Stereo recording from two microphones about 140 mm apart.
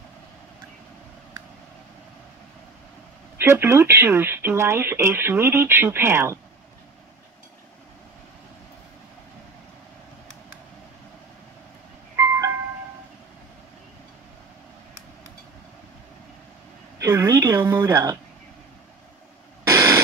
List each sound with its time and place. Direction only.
3.3 s speech: 15° right (ahead or behind)
12.2 s music: 20° right (ahead or behind)
17.0 s a sound: 20° right (ahead or behind)
19.6 s radio: 20° right (ahead or behind)